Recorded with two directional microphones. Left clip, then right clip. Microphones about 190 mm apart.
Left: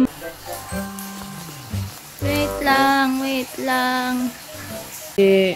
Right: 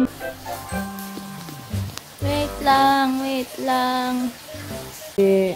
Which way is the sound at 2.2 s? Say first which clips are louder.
Left 1 dB; 5° right (ahead or behind).